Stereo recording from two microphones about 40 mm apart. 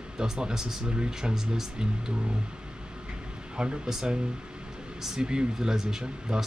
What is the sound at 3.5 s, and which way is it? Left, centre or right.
Speech, right.